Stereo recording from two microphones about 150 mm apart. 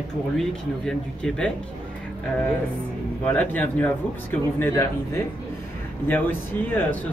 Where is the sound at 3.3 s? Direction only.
10° left (ahead or behind).